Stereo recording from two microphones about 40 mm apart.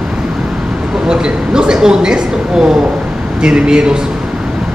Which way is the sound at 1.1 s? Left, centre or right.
Centre.